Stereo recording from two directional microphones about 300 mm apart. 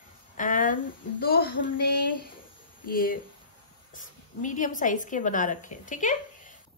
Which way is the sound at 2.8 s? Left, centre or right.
Left.